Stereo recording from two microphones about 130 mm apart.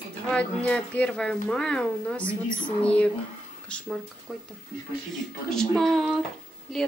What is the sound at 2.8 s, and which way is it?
Speech, 10° left (ahead or behind).